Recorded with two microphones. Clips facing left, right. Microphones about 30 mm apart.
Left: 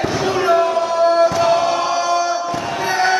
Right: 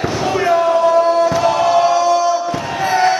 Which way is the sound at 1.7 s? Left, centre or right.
Centre.